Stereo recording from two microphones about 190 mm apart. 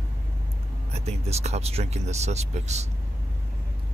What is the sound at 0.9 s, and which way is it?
Speech, 35° right (ahead or behind).